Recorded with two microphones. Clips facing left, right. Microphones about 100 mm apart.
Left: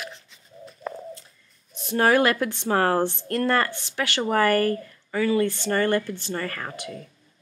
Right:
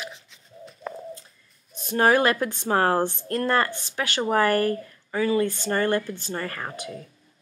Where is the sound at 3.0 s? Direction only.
45° right (ahead or behind).